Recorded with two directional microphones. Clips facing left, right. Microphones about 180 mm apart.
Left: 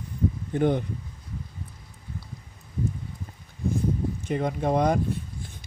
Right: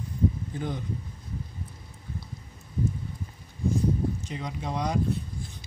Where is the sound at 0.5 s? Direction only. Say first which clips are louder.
Left 10 dB; 60° left (ahead or behind).